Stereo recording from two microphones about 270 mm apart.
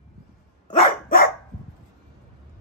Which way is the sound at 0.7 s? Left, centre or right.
Left.